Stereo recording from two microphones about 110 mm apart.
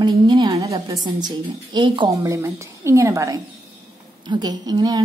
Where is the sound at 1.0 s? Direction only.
40° right (ahead or behind).